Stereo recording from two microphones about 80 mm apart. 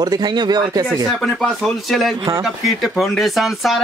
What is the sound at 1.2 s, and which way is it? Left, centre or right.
Speech, centre.